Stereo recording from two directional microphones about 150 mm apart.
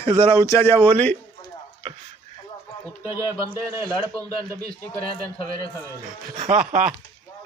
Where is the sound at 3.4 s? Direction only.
20° right (ahead or behind).